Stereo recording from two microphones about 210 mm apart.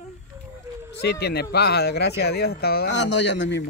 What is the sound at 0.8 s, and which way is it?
Speech, 50° left (ahead or behind).